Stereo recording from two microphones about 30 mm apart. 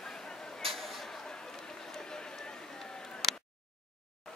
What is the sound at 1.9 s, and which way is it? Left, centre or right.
Run, left.